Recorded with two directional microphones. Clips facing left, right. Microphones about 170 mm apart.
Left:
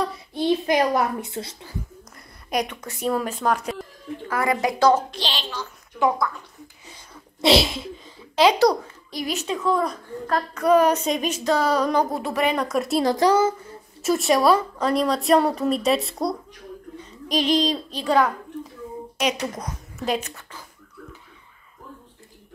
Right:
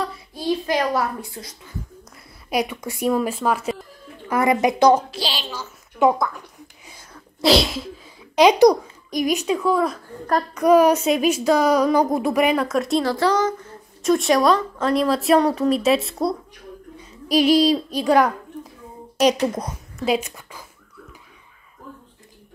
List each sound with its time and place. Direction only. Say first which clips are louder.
0.3 s a child's voice: left 2 dB; 25° left (ahead or behind)
2.5 s a child's voice: right 3 dB; 5° right (ahead or behind)
4.3 s a woman's voice: right 5 dB; 20° right (ahead or behind)
5.1 s a child's voice: right 1 dB; 5° right (ahead or behind)
5.9 s speech: right 4 dB; 20° right (ahead or behind)
7.4 s a woman's voice: right 1 dB; centre (ahead or behind)
8.4 s a child's voice: right 4 dB; 15° right (ahead or behind)
12.6 s a woman's voice: right 2 dB; centre (ahead or behind)
13.0 s a woman's voice: left 1 dB; 15° left (ahead or behind); by 18.7 s 10° right (ahead or behind)
19.1 s a child's voice: right 7 dB; 35° right (ahead or behind)
20.1 s a child's voice: right 4 dB; 10° right (ahead or behind)